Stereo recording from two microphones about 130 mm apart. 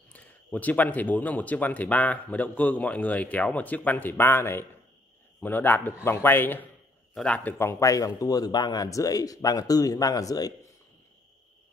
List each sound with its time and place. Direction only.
0.1 s a man's voice: 10° left (ahead or behind); by 10.7 s 30° left (ahead or behind)